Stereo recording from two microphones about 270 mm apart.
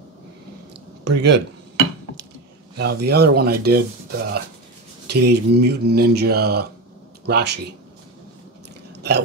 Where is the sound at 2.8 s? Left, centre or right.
Right.